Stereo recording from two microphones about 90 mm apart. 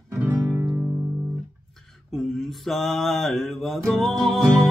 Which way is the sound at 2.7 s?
Centre (ahead or behind).